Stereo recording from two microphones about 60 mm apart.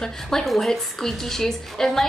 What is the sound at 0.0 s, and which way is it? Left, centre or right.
A woman's voice, centre.